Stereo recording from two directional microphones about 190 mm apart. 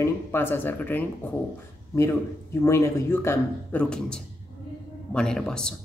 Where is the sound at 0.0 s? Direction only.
10° left (ahead or behind).